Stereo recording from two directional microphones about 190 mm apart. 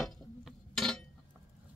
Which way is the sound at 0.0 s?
Centre (ahead or behind).